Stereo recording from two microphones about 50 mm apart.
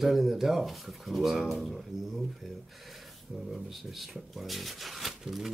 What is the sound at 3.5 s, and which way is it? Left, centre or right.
Speech, centre.